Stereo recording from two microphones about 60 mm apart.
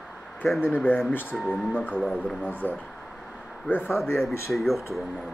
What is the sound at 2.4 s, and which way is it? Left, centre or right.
Speech, left.